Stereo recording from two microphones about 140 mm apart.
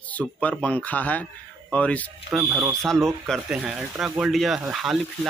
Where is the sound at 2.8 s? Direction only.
5° left (ahead or behind).